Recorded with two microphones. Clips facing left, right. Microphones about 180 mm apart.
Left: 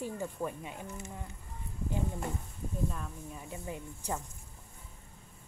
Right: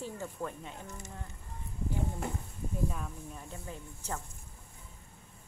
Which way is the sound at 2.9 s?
5° right (ahead or behind).